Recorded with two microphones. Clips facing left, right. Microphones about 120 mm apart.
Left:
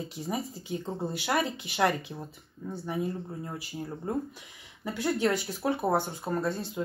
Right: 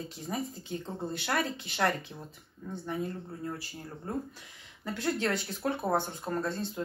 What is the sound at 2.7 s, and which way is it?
Speech, 10° left (ahead or behind).